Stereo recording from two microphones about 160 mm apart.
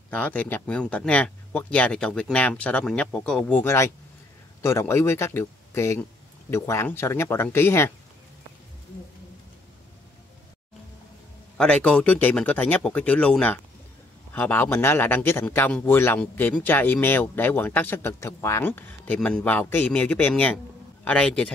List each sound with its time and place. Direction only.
0.1 s speech: 10° left (ahead or behind)
11.5 s speech: 5° left (ahead or behind)